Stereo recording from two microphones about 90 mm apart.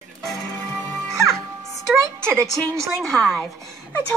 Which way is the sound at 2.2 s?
30° right (ahead or behind).